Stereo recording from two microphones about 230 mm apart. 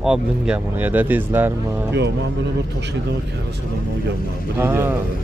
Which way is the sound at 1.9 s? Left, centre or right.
Right.